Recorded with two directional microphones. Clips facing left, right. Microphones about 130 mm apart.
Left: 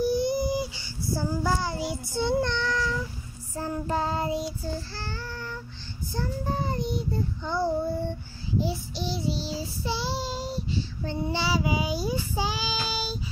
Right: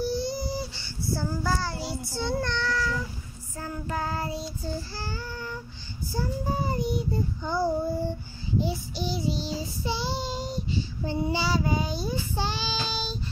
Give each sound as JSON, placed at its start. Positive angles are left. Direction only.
{"t": 0.0, "sound": "child singing", "side_deg": 20}
{"t": 3.5, "sound": "child singing", "side_deg": 30}
{"t": 4.9, "sound": "child singing", "side_deg": -5}